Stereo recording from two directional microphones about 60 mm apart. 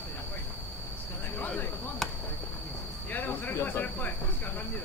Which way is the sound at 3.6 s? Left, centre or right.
Left.